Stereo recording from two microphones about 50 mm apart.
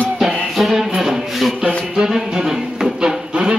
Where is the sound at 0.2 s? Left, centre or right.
Centre.